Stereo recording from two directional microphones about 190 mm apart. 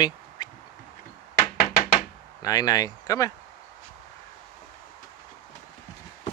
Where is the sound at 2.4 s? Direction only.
20° left (ahead or behind).